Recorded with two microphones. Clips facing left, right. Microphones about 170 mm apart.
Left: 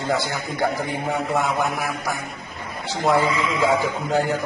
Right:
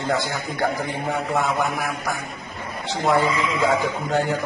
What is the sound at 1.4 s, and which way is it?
Speech, 15° left (ahead or behind).